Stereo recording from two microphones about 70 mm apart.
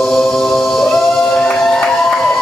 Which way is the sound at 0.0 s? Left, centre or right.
Centre.